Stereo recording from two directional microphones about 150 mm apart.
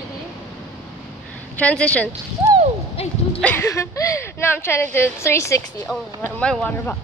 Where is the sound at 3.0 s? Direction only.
40° left (ahead or behind).